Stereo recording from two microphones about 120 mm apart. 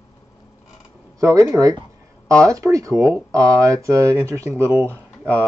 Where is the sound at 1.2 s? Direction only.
25° right (ahead or behind).